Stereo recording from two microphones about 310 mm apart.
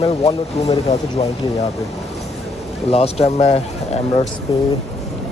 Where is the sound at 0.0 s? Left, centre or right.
Centre.